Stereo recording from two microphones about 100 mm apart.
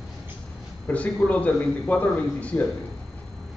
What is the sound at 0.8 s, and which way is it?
A man's voice, 15° left (ahead or behind).